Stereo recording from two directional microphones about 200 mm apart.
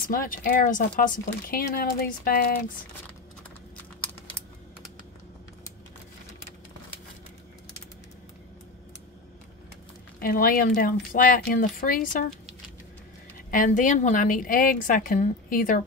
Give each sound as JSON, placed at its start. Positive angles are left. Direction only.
{"t": 0.1, "sound": "speech", "side_deg": 45}
{"t": 10.2, "sound": "speech", "side_deg": 45}
{"t": 13.5, "sound": "a woman's voice", "side_deg": 40}